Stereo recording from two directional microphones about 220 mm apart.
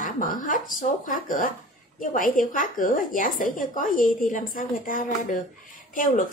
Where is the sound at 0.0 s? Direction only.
40° left (ahead or behind).